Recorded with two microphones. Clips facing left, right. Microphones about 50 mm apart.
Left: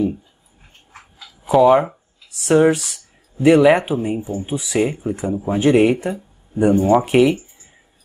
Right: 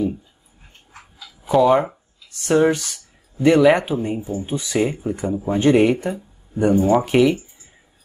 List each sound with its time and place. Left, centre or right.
1.5 s speech: centre
4.2 s speech: left
4.5 s speech: centre